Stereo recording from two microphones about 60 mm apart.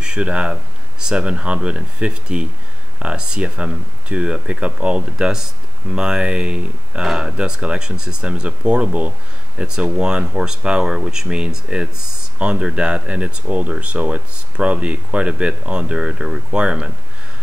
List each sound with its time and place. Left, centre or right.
0.0 s speech: centre